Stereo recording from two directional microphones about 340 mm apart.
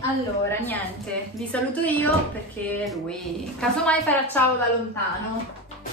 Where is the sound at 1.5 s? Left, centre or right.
Centre.